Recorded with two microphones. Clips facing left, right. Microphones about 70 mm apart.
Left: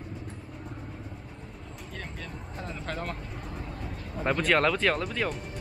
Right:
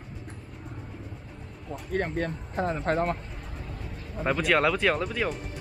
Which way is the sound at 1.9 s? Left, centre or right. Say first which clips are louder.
Right 13 dB; right.